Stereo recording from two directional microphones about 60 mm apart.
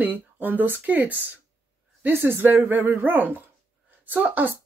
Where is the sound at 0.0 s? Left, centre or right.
Right.